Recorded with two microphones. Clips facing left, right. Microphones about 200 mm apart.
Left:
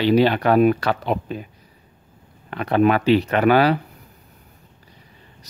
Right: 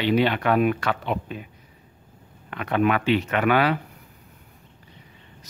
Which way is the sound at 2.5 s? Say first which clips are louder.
Left 5 dB; 35° left (ahead or behind).